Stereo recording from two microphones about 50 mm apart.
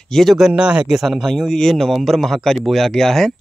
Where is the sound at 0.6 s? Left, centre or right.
Centre.